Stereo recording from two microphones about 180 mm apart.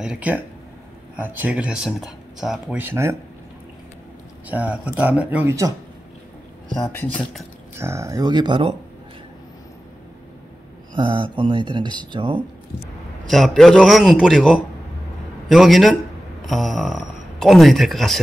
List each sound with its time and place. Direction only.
0.0 s speech: 5° right (ahead or behind)
4.5 s speech: 10° right (ahead or behind)
6.7 s speech: 10° left (ahead or behind)
7.7 s speech: 15° right (ahead or behind)
11.0 s speech: 25° right (ahead or behind)
13.3 s a man's voice: centre (ahead or behind)